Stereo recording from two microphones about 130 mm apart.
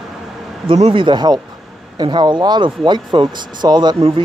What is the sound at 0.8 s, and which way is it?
Speech, 45° right (ahead or behind).